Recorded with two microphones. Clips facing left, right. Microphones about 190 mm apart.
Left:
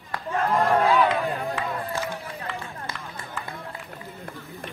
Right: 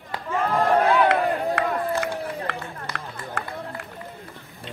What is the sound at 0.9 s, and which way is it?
Run, 75° right (ahead or behind).